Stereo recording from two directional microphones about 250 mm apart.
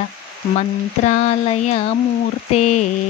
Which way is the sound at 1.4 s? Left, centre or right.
Left.